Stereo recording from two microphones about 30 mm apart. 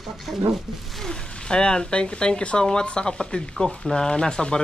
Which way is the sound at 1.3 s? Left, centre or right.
Left.